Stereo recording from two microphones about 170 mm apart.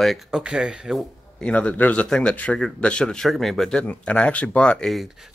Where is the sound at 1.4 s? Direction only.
10° left (ahead or behind).